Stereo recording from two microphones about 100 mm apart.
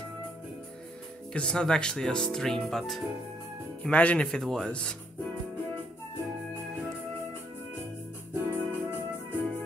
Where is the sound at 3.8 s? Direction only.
15° left (ahead or behind).